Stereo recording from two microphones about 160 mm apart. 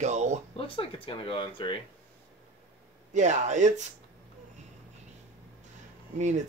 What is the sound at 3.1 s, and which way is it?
Speech, 50° right (ahead or behind).